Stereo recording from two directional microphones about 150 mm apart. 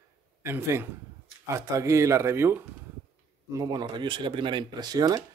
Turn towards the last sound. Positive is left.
turn(degrees=-25)  # may be behind; listen again after turning